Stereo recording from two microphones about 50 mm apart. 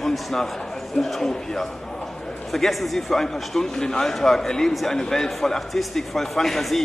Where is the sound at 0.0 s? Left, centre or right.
Centre.